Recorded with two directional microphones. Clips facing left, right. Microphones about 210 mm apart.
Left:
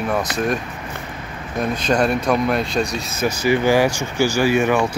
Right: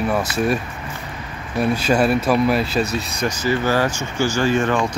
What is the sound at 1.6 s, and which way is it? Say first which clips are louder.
Speech: right 1 dB; 10° right (ahead or behind).